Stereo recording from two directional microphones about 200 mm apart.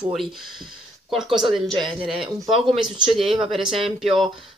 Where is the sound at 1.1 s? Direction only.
Centre (ahead or behind).